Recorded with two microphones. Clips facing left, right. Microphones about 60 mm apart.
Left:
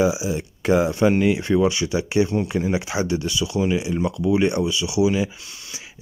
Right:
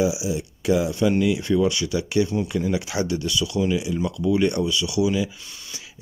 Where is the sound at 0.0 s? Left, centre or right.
Left.